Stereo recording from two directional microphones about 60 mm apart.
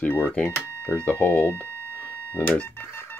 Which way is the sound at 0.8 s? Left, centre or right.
Left.